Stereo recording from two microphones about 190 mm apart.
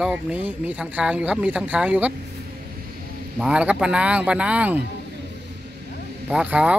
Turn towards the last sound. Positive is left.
turn(degrees=-5)  # may be behind; listen again after turning